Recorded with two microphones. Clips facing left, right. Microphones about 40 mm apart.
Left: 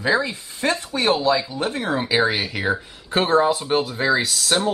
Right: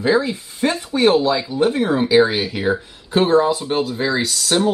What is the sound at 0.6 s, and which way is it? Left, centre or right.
Speech, centre.